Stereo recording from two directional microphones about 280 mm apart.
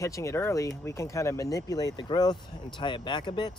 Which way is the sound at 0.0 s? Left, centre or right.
Centre.